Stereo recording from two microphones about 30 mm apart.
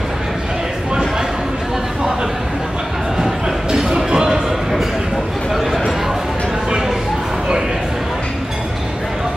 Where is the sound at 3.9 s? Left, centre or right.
Right.